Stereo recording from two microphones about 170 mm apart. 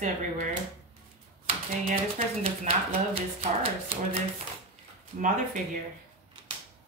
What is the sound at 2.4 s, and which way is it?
Speech, 35° right (ahead or behind).